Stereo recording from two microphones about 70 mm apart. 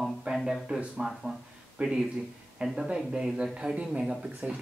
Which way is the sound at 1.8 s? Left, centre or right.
Centre.